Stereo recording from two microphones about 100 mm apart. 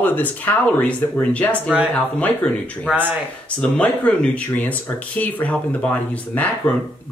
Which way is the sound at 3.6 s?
10° left (ahead or behind).